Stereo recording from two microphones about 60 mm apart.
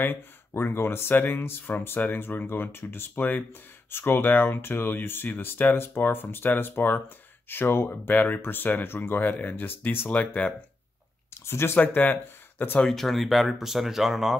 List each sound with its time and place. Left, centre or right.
0.0 s speech: left
10.0 s speech: centre
11.4 s speech: left
11.8 s speech: left
12.8 s speech: centre